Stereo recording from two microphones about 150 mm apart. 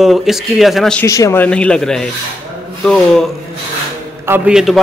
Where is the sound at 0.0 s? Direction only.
Centre (ahead or behind).